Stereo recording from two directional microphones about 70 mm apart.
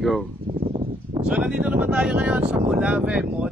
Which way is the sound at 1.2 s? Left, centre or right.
Centre.